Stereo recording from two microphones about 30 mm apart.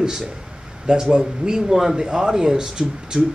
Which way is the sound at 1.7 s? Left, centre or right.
Centre.